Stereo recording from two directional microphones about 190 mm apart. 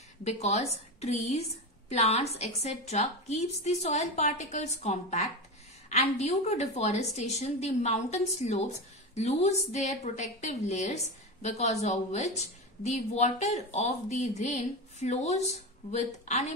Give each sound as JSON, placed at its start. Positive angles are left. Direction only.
{"t": 0.2, "sound": "a woman's voice", "side_deg": 35}